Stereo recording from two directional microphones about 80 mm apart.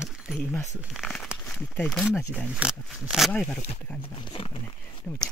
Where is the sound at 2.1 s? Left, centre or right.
Centre.